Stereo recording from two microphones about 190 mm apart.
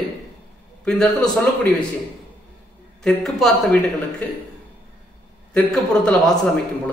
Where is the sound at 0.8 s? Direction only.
5° left (ahead or behind).